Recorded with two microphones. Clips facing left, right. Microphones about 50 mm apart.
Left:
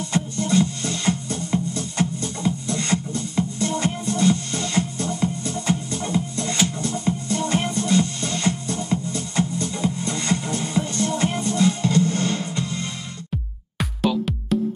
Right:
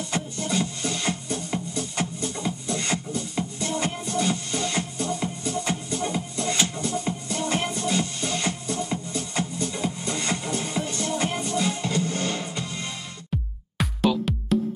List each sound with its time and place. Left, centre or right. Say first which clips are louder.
0.1 s music: left 7 dB; centre
13.7 s music: left 1 dB; centre